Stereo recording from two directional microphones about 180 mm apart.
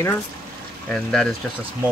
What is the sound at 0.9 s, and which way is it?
Speech, 5° left (ahead or behind).